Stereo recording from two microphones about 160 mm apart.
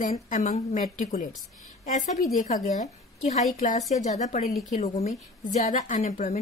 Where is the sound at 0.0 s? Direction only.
50° left (ahead or behind).